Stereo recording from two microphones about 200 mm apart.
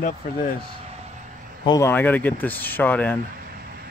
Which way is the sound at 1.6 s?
20° left (ahead or behind).